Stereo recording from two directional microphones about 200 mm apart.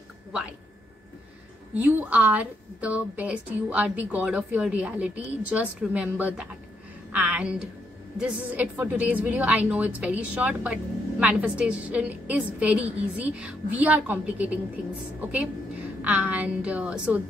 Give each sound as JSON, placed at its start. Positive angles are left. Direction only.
{"t": 1.8, "sound": "a woman's voice", "side_deg": -5}
{"t": 16.0, "sound": "a woman's voice", "side_deg": -5}